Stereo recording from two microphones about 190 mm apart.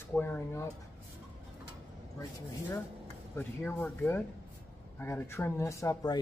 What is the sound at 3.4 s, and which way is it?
Speech, 10° left (ahead or behind).